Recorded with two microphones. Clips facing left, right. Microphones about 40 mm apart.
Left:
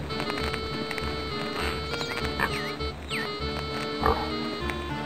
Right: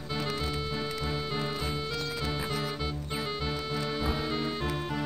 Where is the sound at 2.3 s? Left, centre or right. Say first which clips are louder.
Left 5 dB; left.